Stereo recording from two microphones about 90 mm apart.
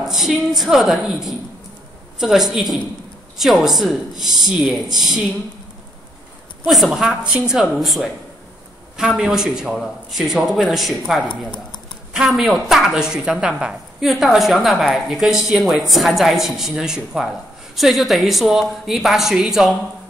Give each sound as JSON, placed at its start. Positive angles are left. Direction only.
{"t": 0.0, "sound": "a woman's voice", "side_deg": -5}
{"t": 6.7, "sound": "a woman's voice", "side_deg": 0}
{"t": 11.2, "sound": "speech", "side_deg": 60}
{"t": 12.1, "sound": "a woman's voice", "side_deg": -5}